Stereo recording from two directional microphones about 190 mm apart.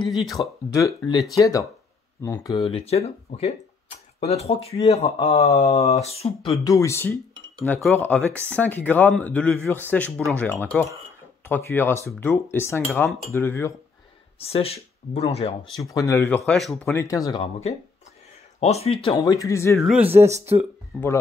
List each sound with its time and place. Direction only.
0.0 s speech: centre (ahead or behind)
0.7 s speech: 20° left (ahead or behind)
2.6 s speech: 30° left (ahead or behind)
6.6 s speech: 15° left (ahead or behind)
14.5 s speech: 30° left (ahead or behind)
15.9 s speech: 15° left (ahead or behind)
16.9 s speech: 15° left (ahead or behind)
18.6 s speech: 35° left (ahead or behind)
19.2 s speech: 15° left (ahead or behind)
19.8 s speech: 5° right (ahead or behind)